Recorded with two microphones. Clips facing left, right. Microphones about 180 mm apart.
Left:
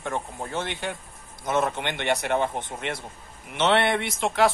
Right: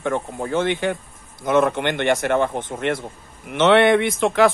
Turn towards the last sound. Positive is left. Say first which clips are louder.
# right 6 dB
turn(degrees=-55)  # may be behind; listen again after turning